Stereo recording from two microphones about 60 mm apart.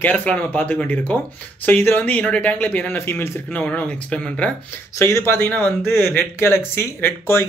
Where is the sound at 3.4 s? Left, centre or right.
Left.